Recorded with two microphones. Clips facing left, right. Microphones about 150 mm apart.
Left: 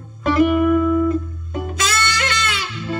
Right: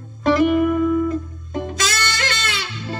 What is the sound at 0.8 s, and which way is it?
Music, 45° left (ahead or behind).